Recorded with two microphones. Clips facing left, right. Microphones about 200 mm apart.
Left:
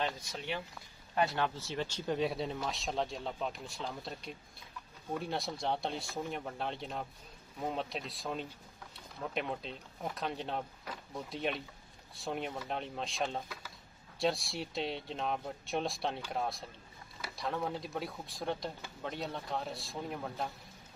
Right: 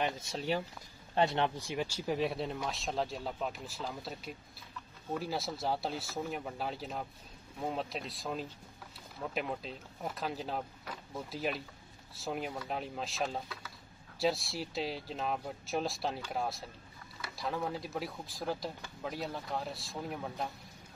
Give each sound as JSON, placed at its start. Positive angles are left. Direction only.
{"t": 0.0, "sound": "speech", "side_deg": -25}
{"t": 0.4, "sound": "speech", "side_deg": -40}
{"t": 1.1, "sound": "speech", "side_deg": -25}